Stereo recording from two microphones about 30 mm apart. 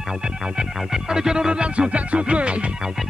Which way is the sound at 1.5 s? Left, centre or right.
Right.